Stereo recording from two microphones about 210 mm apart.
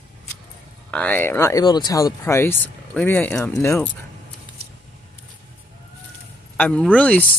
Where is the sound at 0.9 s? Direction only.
5° left (ahead or behind).